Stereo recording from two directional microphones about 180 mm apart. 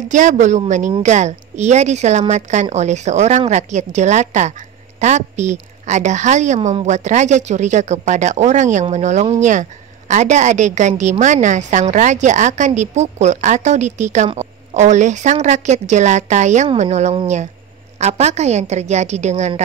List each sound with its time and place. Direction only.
0.1 s a woman's voice: 45° right (ahead or behind)